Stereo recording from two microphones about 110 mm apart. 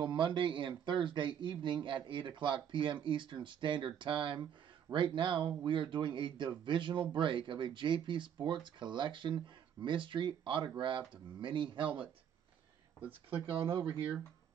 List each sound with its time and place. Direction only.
0.0 s speech: 45° right (ahead or behind)
13.3 s speech: 55° right (ahead or behind)